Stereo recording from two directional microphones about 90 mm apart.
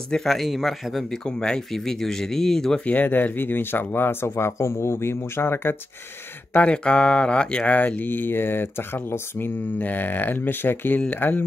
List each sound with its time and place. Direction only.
0.1 s speech: 5° left (ahead or behind); by 5.8 s 25° left (ahead or behind)
6.5 s speech: 10° left (ahead or behind)